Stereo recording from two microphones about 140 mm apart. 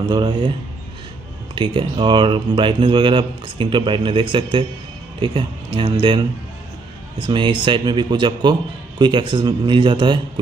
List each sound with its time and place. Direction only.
0.1 s a man's voice: 35° right (ahead or behind)
1.5 s a man's voice: 40° right (ahead or behind)